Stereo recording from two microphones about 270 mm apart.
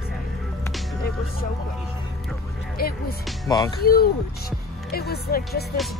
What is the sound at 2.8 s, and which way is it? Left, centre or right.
Music, left.